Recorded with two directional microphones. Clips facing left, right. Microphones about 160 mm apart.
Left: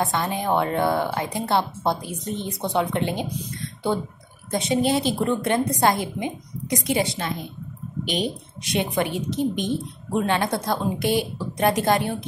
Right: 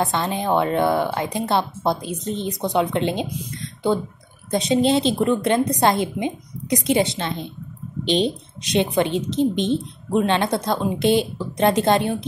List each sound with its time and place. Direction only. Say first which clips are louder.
0.0 s speech: right 2 dB; 20° right (ahead or behind)
4.5 s speech: right 3 dB; 20° right (ahead or behind)